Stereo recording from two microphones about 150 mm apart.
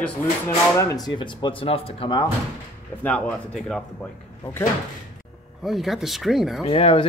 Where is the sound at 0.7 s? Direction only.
25° left (ahead or behind).